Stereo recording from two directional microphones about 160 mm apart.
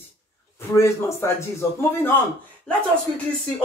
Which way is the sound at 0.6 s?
20° left (ahead or behind).